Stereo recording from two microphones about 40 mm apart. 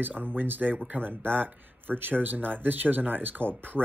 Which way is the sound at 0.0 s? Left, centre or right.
Right.